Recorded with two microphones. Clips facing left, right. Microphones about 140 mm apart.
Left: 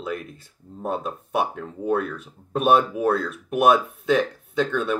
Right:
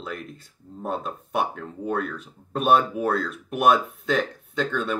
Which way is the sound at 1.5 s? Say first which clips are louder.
Left 2 dB; 15° left (ahead or behind).